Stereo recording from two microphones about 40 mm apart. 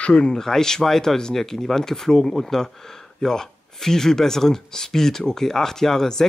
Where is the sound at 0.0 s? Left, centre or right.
Left.